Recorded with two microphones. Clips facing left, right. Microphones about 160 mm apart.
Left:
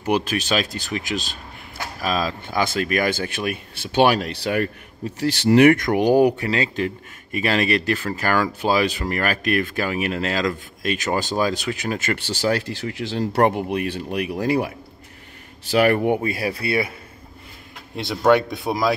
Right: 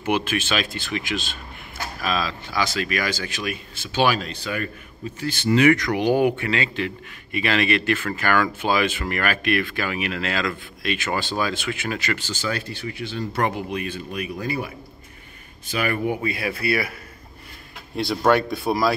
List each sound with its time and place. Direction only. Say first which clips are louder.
0.0 s speech: left 2 dB; 35° left (ahead or behind)
12.2 s speech: left 6 dB; 65° left (ahead or behind)
13.4 s speech: left 6 dB; 55° left (ahead or behind); by 14.7 s 75° left (ahead or behind)
15.7 s speech: left 7 dB; 65° left (ahead or behind)
16.2 s speech: left 2 dB; 40° left (ahead or behind)
17.9 s speech: left 2 dB; 20° left (ahead or behind)